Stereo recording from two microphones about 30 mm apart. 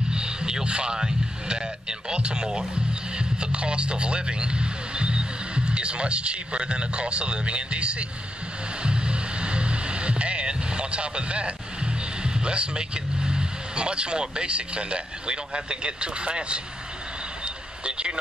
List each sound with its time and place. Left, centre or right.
0.1 s a man's voice: right
8.8 s music: right
17.8 s speech: right